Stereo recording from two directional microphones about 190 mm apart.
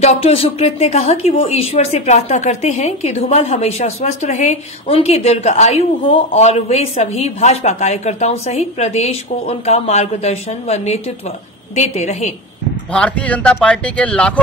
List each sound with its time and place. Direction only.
0.0 s speech: 35° left (ahead or behind)
12.9 s speech: 5° left (ahead or behind)